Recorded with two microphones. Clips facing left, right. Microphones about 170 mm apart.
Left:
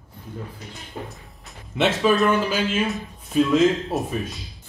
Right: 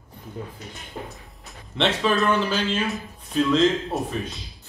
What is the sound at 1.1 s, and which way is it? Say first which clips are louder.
Speech: even; centre (ahead or behind).